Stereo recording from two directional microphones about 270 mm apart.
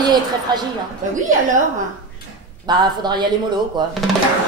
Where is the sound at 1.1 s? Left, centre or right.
Right.